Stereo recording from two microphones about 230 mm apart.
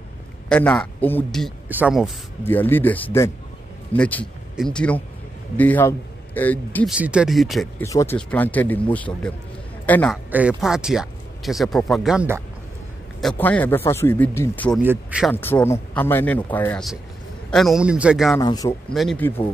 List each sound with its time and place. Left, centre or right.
0.5 s speech: centre
6.9 s speech: centre
7.8 s a man's voice: centre
10.3 s speech: centre
13.2 s speech: centre
14.8 s speech: centre
15.3 s speech: centre
18.4 s speech: centre
18.9 s speech: centre